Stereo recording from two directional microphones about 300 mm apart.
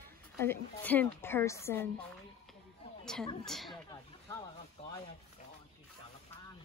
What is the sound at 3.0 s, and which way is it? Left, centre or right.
Speech, centre.